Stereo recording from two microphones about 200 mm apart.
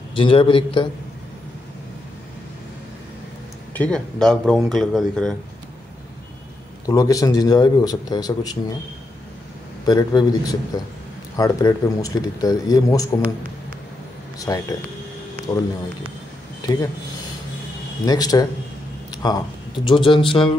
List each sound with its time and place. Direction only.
0.1 s a man's voice: 25° left (ahead or behind)
3.7 s speech: 5° left (ahead or behind)
6.9 s a man's voice: 15° left (ahead or behind)
9.8 s a man's voice: 20° left (ahead or behind)
14.4 s a man's voice: 20° left (ahead or behind)
18.0 s a man's voice: 20° left (ahead or behind)